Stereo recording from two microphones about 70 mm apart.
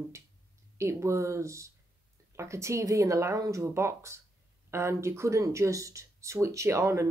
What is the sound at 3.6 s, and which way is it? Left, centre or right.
Speech, right.